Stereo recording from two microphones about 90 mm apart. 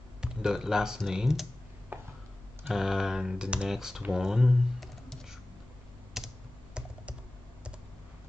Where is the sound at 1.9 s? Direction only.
20° right (ahead or behind).